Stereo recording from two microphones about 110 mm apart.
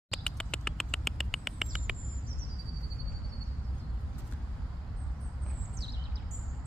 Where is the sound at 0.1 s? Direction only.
5° left (ahead or behind).